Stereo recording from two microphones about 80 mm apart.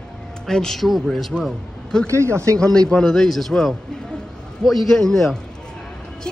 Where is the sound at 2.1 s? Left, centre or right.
Right.